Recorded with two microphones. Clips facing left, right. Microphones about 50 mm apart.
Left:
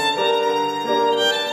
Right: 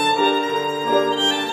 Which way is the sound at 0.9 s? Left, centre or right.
Right.